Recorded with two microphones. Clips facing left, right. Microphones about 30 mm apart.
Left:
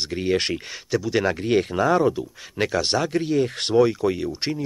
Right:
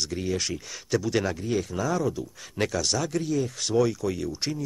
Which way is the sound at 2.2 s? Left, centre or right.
Left.